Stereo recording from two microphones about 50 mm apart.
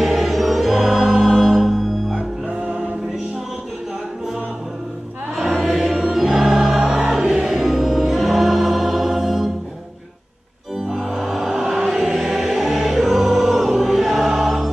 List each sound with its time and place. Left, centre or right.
0.0 s music: centre
5.3 s music: centre
10.9 s music: centre